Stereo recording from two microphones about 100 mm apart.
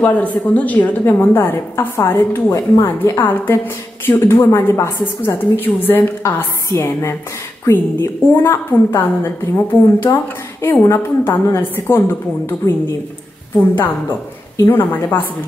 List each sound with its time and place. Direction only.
0.0 s a woman's voice: 15° left (ahead or behind)
10.1 s speech: 45° left (ahead or behind)
10.6 s a woman's voice: 20° left (ahead or behind)
14.6 s a woman's voice: 20° left (ahead or behind)